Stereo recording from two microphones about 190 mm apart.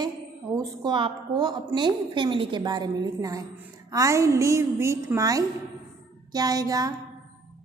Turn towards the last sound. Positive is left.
turn(degrees=-20)  # may be behind; listen again after turning